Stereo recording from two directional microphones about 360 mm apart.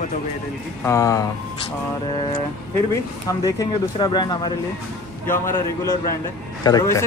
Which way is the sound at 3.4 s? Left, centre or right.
Centre.